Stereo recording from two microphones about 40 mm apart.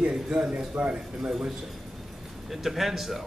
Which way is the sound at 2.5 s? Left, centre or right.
Centre.